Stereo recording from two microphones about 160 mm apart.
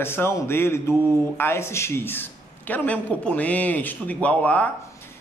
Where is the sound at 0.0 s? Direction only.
15° left (ahead or behind).